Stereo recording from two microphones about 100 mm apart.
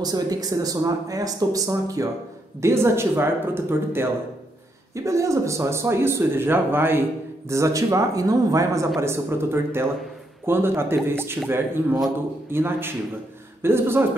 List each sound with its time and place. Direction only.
0.0 s speech: 40° right (ahead or behind)
9.0 s speech: 25° right (ahead or behind)